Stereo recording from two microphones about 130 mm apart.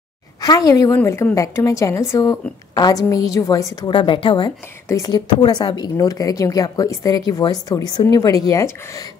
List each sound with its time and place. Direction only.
0.4 s a woman's voice: 30° left (ahead or behind)
3.9 s a woman's voice: 40° left (ahead or behind)
4.8 s a woman's voice: 25° left (ahead or behind)